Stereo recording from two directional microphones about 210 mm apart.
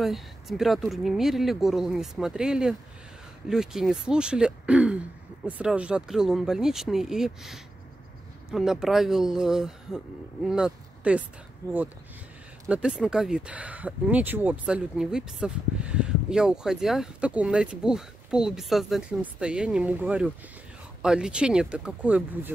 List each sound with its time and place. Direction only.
0.0 s speech: centre (ahead or behind)
12.6 s speech: 5° right (ahead or behind)